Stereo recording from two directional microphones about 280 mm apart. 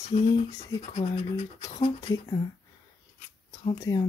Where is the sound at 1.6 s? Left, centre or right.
Centre.